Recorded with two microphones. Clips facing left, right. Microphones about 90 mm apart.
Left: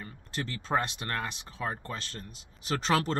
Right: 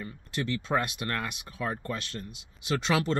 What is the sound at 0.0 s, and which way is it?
Speech, 35° left (ahead or behind).